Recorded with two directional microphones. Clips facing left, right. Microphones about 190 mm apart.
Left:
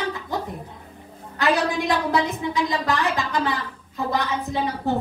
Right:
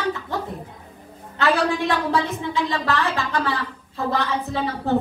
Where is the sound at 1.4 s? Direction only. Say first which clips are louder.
Right 1 dB; 15° left (ahead or behind).